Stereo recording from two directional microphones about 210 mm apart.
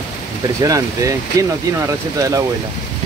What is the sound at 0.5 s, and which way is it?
Speech, 15° right (ahead or behind).